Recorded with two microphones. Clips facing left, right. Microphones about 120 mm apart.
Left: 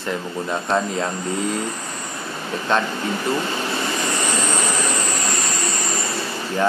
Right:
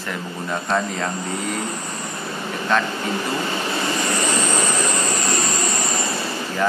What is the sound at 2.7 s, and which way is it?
Speech, 25° left (ahead or behind).